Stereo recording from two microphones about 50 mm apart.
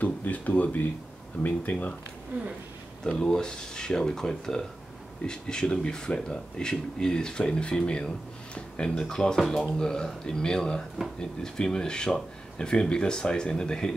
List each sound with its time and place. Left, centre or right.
0.0 s speech: left
3.1 s speech: centre